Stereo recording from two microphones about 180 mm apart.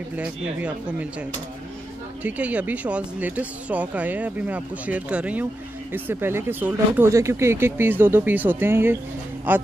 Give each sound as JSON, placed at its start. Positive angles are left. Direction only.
{"t": 0.1, "sound": "speech", "side_deg": -10}
{"t": 2.2, "sound": "speech", "side_deg": -10}